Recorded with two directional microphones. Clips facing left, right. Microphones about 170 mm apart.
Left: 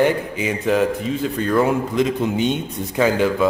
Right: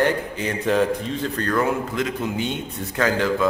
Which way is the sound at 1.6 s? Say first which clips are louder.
Left 5 dB; 20° left (ahead or behind).